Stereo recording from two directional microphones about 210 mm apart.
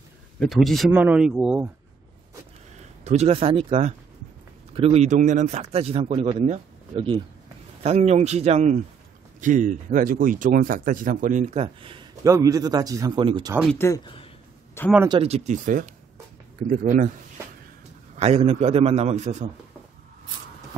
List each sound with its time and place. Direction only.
0.4 s speech: centre (ahead or behind)
3.0 s speech: 30° right (ahead or behind)
13.7 s speech: 15° left (ahead or behind)
15.0 s speech: 30° right (ahead or behind)
18.1 s speech: 30° right (ahead or behind)